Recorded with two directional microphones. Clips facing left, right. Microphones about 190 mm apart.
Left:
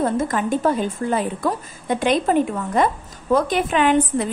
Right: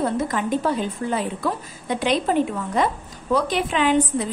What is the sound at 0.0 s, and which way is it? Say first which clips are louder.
A woman's voice: left 2 dB; 45° left (ahead or behind).